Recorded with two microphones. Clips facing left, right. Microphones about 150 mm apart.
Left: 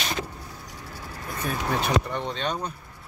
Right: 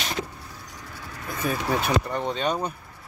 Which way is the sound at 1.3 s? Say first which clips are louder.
Right 2 dB; 5° right (ahead or behind).